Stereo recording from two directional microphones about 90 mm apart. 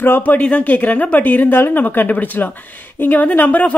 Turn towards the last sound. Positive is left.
turn(degrees=20)  # may be behind; listen again after turning